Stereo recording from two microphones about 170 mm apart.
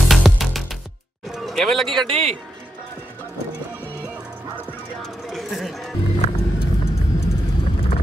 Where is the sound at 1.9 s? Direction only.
35° right (ahead or behind).